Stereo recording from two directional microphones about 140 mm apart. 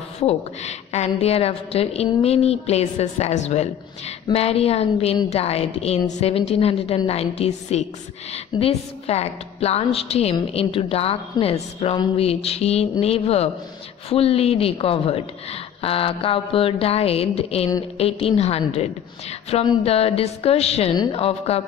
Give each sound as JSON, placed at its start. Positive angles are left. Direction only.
{"t": 0.3, "sound": "a woman's voice", "side_deg": 50}